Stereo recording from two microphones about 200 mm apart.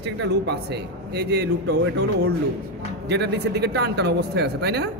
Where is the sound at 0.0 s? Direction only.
55° right (ahead or behind).